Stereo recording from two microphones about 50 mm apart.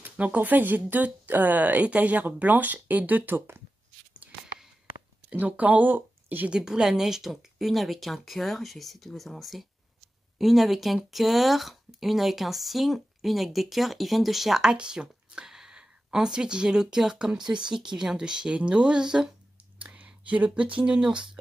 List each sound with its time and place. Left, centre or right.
0.0 s speech: right
5.5 s speech: right
6.5 s speech: centre
19.8 s speech: right